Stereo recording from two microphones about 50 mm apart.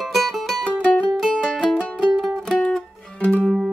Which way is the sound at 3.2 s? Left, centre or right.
Left.